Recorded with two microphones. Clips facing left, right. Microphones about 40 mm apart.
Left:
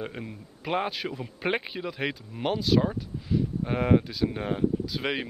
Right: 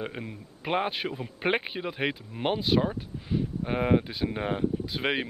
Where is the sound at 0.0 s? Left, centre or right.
Centre.